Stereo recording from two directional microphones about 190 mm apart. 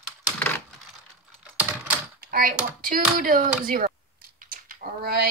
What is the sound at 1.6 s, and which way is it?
Typewriter, 5° right (ahead or behind).